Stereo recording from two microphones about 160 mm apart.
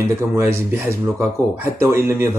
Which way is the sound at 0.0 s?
15° right (ahead or behind).